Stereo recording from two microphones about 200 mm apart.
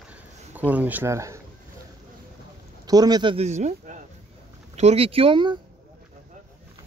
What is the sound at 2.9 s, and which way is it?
A man's voice, 20° right (ahead or behind).